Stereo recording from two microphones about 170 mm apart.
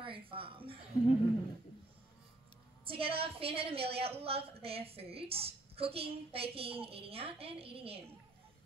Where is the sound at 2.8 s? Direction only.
30° right (ahead or behind).